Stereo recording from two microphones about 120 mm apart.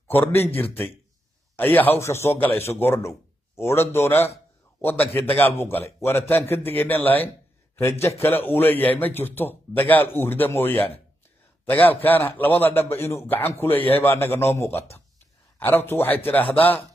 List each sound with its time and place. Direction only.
0.1 s a man's voice: 15° left (ahead or behind)
1.6 s a man's voice: 15° left (ahead or behind)